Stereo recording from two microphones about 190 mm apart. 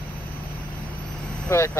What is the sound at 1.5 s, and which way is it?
Speech, 15° left (ahead or behind).